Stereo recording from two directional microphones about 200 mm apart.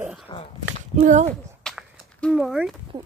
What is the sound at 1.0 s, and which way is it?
Speech, 35° right (ahead or behind).